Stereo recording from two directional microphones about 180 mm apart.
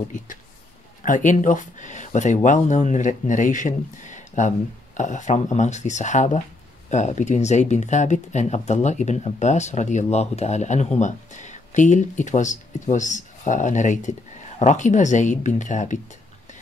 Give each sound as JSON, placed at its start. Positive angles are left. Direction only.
{"t": 1.0, "sound": "speech", "side_deg": 45}